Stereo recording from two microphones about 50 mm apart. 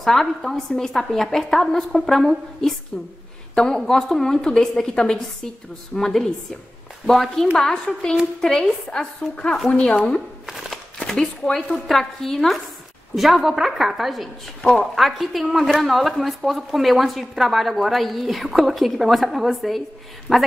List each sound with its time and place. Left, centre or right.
0.0 s a woman's voice: centre
10.4 s a sound: centre
11.1 s a woman's voice: centre
11.7 s a woman's voice: centre
14.6 s a woman's voice: centre
15.0 s a woman's voice: centre